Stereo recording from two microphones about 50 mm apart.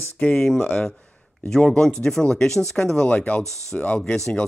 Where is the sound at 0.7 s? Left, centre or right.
Centre.